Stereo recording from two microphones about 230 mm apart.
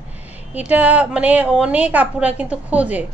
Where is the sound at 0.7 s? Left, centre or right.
Centre.